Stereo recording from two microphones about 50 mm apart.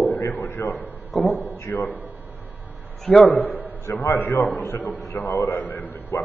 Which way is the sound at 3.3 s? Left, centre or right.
Left.